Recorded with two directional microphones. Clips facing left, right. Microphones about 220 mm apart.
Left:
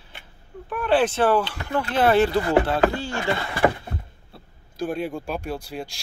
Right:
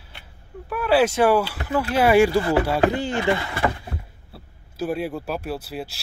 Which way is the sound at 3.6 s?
35° left (ahead or behind).